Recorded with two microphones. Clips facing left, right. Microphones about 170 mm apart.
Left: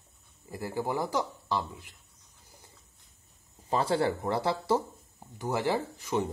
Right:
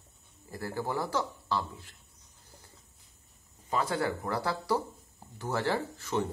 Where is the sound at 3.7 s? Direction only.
30° left (ahead or behind).